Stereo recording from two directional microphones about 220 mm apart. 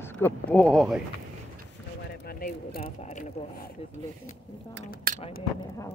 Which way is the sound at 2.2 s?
45° left (ahead or behind).